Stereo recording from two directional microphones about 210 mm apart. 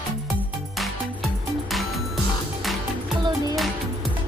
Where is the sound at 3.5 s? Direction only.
Centre (ahead or behind).